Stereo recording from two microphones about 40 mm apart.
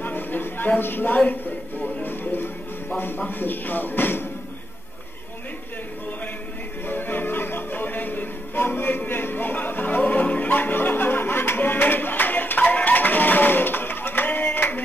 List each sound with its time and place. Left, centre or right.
0.0 s a sound: left
1.1 s speech: left
2.0 s speech: left
6.9 s music: left
10.5 s music: left
14.5 s clapping: left